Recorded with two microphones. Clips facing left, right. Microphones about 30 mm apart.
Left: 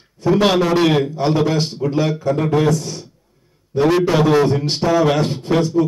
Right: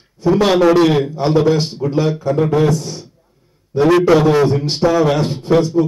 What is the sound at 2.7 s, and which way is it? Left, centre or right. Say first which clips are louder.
Speech: right 1 dB; centre.